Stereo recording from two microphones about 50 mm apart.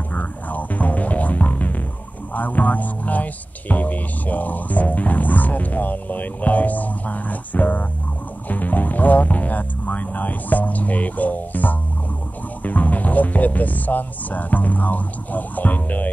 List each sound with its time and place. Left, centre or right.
0.1 s music: left
12.6 s speech: left